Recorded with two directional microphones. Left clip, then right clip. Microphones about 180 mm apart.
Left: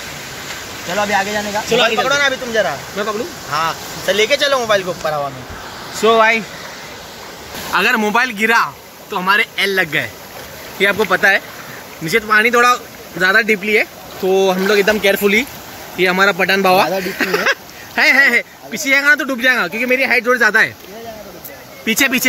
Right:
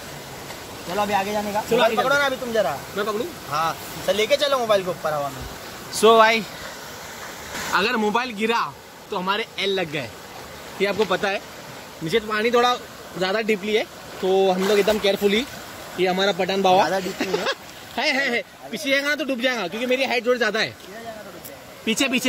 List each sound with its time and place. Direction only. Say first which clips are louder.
0.9 s speech: left 6 dB; centre (ahead or behind)
3.0 s speech: left 4 dB; 60° right (ahead or behind)
3.5 s speech: left 5 dB; centre (ahead or behind)
5.9 s speech: left 3 dB; 15° right (ahead or behind)
7.7 s speech: left 7 dB; centre (ahead or behind)
21.8 s speech: left 7 dB; 5° right (ahead or behind)